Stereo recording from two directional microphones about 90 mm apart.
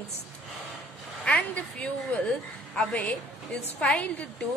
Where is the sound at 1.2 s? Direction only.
15° left (ahead or behind).